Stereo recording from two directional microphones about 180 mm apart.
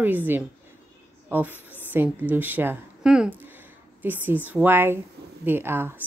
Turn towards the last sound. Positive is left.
turn(degrees=-10)  # may be behind; listen again after turning